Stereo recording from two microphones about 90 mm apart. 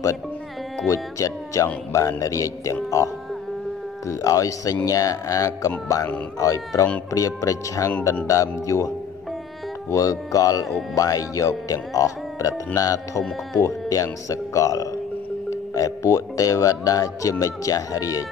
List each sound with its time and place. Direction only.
0.8 s speech: 40° left (ahead or behind)
4.1 s speech: 40° left (ahead or behind)